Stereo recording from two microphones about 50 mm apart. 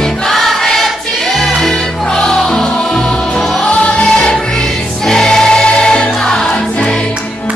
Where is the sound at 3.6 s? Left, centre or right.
Left.